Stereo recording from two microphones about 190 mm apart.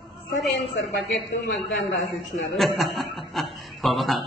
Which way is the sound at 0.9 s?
60° left (ahead or behind).